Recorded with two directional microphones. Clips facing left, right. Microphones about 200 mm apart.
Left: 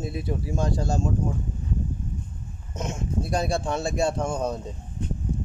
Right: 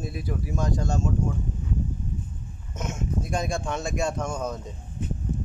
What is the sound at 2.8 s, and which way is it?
Speech, 35° left (ahead or behind).